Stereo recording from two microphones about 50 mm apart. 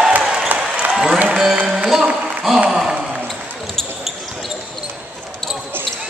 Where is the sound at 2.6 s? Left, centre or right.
Centre.